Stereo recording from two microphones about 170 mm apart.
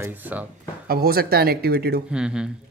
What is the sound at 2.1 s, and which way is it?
Speech, 5° right (ahead or behind).